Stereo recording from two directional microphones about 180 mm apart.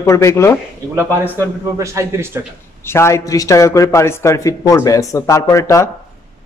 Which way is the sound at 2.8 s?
15° left (ahead or behind).